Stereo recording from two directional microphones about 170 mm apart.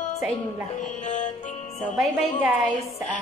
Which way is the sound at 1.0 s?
45° left (ahead or behind).